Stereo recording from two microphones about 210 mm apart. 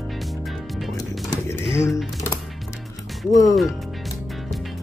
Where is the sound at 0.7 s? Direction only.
Centre (ahead or behind).